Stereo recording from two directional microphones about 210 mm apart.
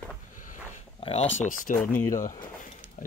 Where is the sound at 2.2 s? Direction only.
40° left (ahead or behind).